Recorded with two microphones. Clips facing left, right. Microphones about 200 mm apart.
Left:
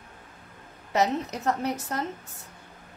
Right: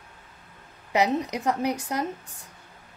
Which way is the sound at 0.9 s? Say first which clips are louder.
Right 2 dB; 15° right (ahead or behind).